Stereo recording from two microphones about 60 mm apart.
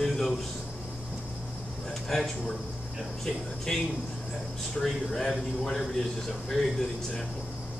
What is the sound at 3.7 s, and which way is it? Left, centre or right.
Speech, centre.